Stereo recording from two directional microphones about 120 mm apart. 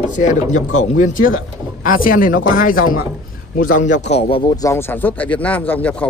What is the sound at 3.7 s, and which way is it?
Speech, 90° left.